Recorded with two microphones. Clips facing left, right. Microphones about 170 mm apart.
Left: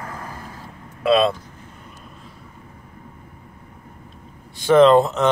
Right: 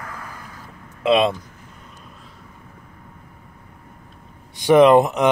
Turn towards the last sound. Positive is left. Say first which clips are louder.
# even
turn(degrees=-15)  # may be behind; listen again after turning